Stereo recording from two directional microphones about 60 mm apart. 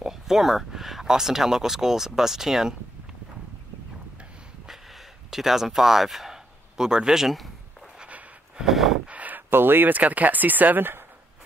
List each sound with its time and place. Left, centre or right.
0.0 s speech: centre
5.3 s speech: centre
8.0 s a sound: centre
8.6 s gasp: centre
9.0 s a sound: right
9.5 s speech: right